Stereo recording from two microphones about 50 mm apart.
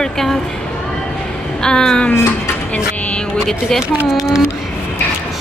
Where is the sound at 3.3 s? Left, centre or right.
Centre.